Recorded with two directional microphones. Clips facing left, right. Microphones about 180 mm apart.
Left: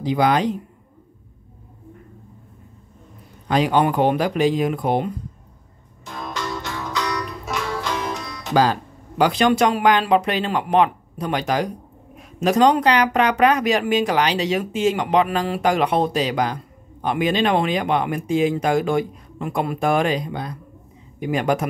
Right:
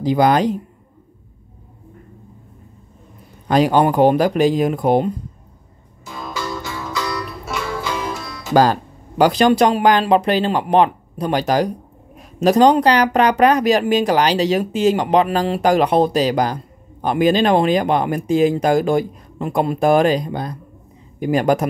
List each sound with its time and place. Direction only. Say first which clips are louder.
0.0 s speech: right 4 dB; 40° right (ahead or behind)
3.4 s speech: right 4 dB; 40° right (ahead or behind)
6.0 s music: right 2 dB; 5° right (ahead or behind)
9.2 s speech: right 4 dB; 40° right (ahead or behind)